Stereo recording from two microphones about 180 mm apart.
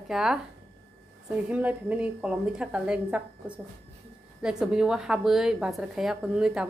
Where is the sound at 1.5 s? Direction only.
5° right (ahead or behind).